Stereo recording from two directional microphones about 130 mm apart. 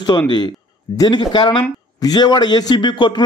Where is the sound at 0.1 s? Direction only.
35° left (ahead or behind).